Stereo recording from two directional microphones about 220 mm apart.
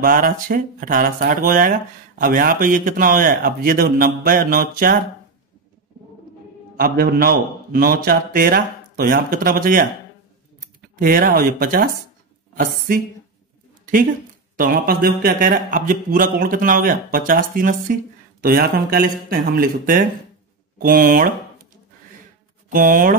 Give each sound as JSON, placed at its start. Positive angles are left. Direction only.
{"t": 0.0, "sound": "speech", "side_deg": -40}
{"t": 6.8, "sound": "speech", "side_deg": -40}
{"t": 11.0, "sound": "speech", "side_deg": -40}
{"t": 14.6, "sound": "speech", "side_deg": -40}
{"t": 22.7, "sound": "speech", "side_deg": -40}